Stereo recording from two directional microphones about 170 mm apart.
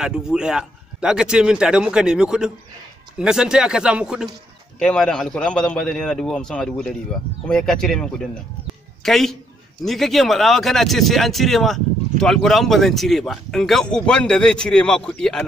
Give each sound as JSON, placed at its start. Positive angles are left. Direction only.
{"t": 0.0, "sound": "speech", "side_deg": -5}